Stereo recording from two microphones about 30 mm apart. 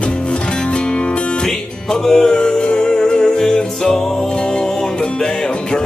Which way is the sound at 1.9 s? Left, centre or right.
Left.